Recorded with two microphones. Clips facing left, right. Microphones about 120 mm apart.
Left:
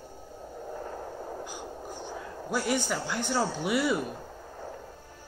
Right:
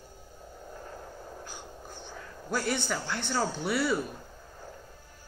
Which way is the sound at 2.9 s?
10° left (ahead or behind).